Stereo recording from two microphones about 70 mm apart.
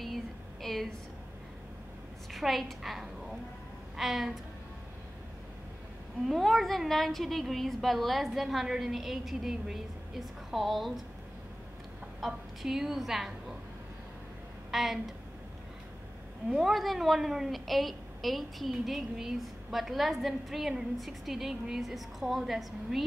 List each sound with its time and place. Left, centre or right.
0.0 s a sound: centre
2.3 s a woman's voice: centre
6.2 s a woman's voice: centre
12.2 s a woman's voice: centre
14.7 s a woman's voice: centre
16.4 s a woman's voice: centre
16.7 s a woman's voice: centre